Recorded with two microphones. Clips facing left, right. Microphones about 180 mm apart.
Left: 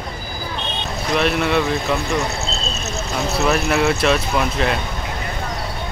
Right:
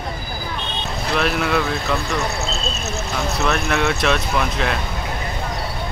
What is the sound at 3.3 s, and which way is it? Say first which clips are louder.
Speech: left 3 dB; 5° left (ahead or behind).